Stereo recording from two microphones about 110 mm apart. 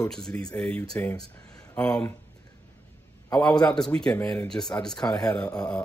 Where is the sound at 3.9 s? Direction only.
15° left (ahead or behind).